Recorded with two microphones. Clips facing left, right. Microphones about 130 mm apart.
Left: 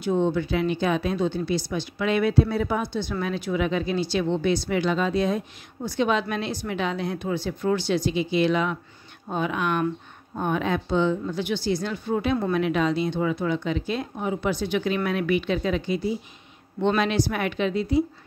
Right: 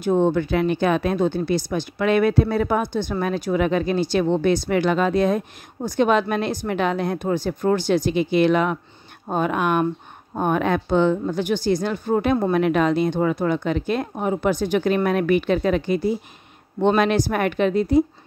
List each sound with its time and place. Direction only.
0.0 s speech: 50° right (ahead or behind)